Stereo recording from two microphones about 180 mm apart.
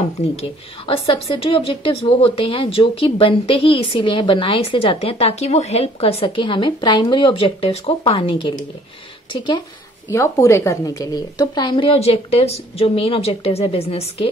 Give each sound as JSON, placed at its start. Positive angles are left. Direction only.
{"t": 0.4, "sound": "a woman's voice", "side_deg": 30}
{"t": 10.0, "sound": "a woman's voice", "side_deg": 15}